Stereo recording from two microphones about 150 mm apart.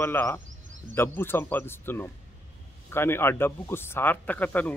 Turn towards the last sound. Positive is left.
turn(degrees=10)  # may be behind; listen again after turning